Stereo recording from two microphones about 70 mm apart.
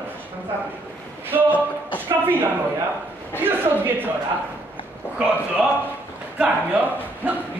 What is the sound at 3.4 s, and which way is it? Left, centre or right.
Speech, right.